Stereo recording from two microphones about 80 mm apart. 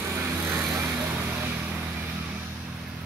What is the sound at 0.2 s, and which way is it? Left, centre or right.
Vehicle, right.